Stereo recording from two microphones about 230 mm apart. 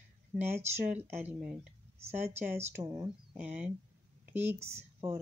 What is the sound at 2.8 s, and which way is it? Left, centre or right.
Speech, centre.